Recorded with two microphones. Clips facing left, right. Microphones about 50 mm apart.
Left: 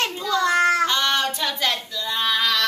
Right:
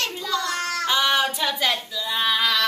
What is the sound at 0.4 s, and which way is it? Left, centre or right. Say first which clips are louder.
Child singing: left 13 dB; left.